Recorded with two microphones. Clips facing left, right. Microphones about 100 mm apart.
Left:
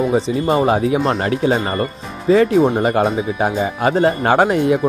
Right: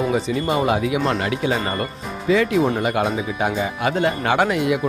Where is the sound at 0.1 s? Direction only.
30° left (ahead or behind).